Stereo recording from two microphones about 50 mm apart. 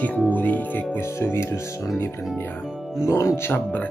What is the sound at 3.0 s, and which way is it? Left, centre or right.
Speech, left.